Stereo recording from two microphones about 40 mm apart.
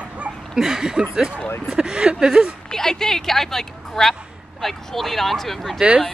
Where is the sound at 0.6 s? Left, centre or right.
Centre.